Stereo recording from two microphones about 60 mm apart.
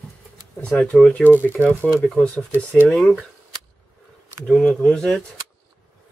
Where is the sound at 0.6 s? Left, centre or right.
Centre.